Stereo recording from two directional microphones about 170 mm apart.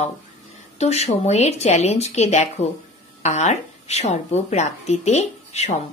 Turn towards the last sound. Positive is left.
turn(degrees=40)  # may be behind; listen again after turning